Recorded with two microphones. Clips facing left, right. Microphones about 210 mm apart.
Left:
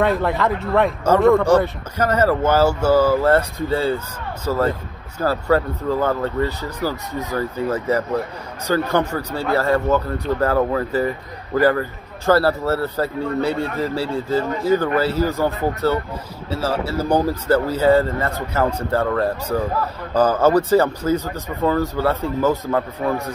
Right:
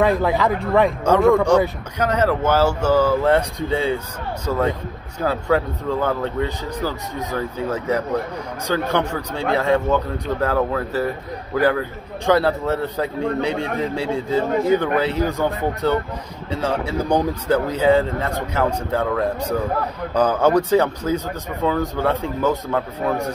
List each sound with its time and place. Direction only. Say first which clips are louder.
0.0 s speech: right 1 dB; centre (ahead or behind)